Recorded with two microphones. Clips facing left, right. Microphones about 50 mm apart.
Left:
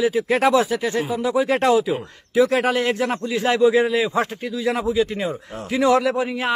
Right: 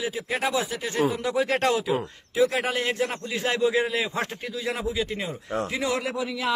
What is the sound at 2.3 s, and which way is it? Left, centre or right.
A man's voice, left.